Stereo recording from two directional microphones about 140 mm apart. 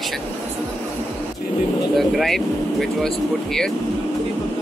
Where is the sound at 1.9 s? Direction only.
Centre (ahead or behind).